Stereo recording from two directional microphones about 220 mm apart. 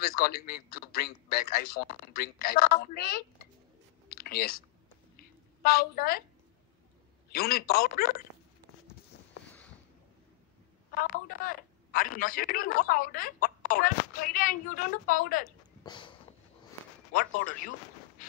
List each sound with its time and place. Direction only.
0.0 s a man's voice: 45° left (ahead or behind)
4.1 s clicking: 45° left (ahead or behind)
5.1 s a sound: 45° left (ahead or behind)
7.3 s a man's voice: 45° left (ahead or behind)
11.0 s speech: 40° left (ahead or behind)
15.8 s a sound: 20° left (ahead or behind)
17.1 s a man's voice: 40° left (ahead or behind)